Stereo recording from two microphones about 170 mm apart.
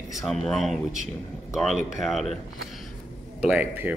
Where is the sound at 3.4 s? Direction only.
10° right (ahead or behind).